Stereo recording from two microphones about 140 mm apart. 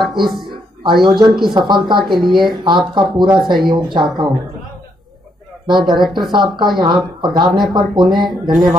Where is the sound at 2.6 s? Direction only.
35° right (ahead or behind).